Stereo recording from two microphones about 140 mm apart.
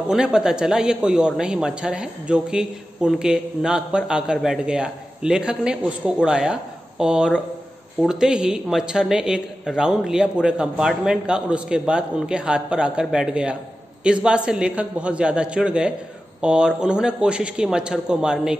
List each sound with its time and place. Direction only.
0.1 s a man's voice: 5° right (ahead or behind)